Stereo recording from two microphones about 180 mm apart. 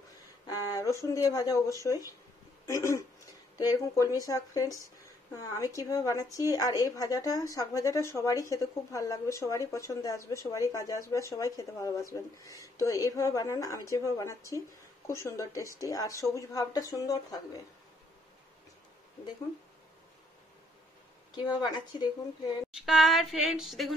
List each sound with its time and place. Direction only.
0.5 s speech: 20° left (ahead or behind)
21.4 s speech: 25° left (ahead or behind)
22.8 s a sound: centre (ahead or behind)